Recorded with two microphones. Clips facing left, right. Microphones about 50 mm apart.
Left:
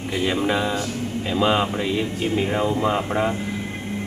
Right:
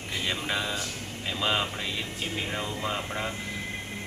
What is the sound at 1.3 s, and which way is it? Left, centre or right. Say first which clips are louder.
Speech: left 8 dB; centre.